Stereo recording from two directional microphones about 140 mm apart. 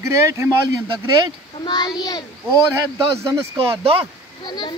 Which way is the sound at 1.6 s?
30° left (ahead or behind).